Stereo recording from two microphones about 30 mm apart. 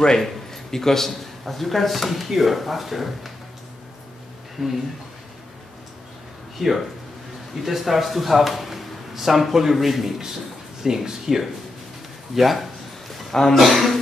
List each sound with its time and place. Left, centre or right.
0.2 s a man's voice: centre
4.6 s a man's voice: centre
6.6 s a man's voice: centre
12.4 s a man's voice: centre
13.3 s a man's voice: centre
13.6 s a man's voice: centre